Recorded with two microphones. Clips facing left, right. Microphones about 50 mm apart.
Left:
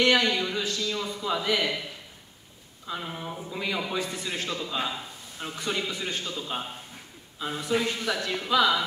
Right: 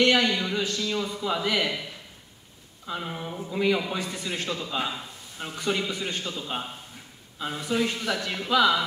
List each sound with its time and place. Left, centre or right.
0.0 s a man's voice: centre
2.9 s a man's voice: centre